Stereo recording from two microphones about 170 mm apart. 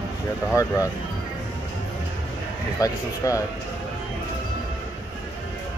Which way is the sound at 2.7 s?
20° left (ahead or behind).